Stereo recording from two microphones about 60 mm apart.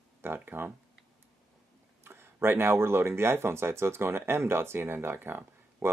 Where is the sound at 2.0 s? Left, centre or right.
Right.